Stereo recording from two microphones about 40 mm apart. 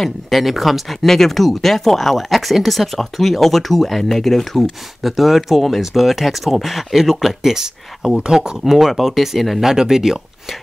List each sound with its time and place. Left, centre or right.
0.0 s speech: centre
5.0 s speech: centre